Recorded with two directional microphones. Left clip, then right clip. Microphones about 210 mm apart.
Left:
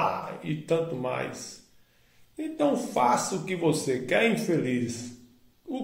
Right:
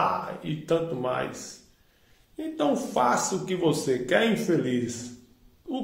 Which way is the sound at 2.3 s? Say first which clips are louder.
Even; 15° right (ahead or behind).